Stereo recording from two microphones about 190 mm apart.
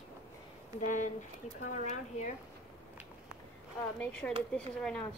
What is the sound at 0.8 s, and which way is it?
Speech, 40° left (ahead or behind).